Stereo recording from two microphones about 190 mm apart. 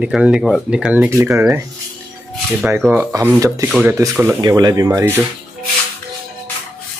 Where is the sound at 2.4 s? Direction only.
Centre (ahead or behind).